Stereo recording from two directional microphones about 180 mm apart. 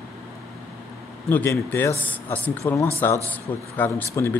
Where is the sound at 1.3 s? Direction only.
10° left (ahead or behind).